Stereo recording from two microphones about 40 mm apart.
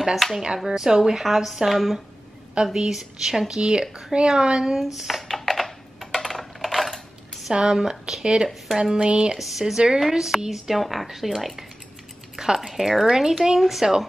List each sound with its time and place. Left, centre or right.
0.0 s a woman's voice: centre
0.7 s speech: centre
2.5 s speech: centre
4.7 s a woman's voice: centre
5.3 s typing: centre
7.5 s speech: centre
9.4 s a woman's voice: centre
12.4 s a woman's voice: centre